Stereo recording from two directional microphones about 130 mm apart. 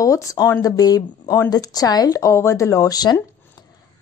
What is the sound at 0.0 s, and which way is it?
Speech, 25° left (ahead or behind).